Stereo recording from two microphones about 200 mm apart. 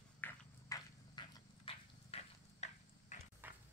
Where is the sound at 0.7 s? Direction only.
25° left (ahead or behind).